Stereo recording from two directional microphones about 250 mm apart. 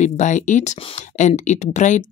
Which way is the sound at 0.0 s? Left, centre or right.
Left.